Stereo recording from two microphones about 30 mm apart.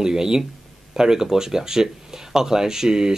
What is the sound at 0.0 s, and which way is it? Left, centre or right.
Speech, centre.